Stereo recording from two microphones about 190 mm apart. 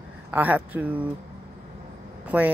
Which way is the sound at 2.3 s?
10° right (ahead or behind).